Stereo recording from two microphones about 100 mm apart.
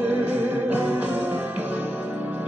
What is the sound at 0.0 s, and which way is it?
Music, 20° right (ahead or behind).